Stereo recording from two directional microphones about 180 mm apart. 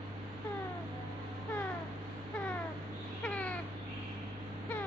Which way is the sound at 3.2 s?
5° left (ahead or behind).